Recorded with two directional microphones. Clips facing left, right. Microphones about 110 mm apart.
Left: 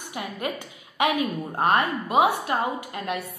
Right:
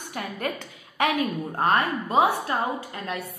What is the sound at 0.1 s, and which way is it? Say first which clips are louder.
A woman's voice: even; 10° left (ahead or behind).